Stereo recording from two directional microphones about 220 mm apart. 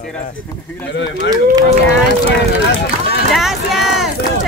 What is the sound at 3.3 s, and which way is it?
Speech, centre (ahead or behind).